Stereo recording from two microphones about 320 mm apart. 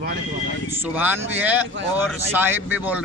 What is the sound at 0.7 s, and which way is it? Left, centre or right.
A man's voice, centre.